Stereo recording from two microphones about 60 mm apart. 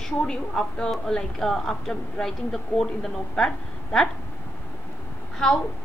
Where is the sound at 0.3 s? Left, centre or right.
Centre.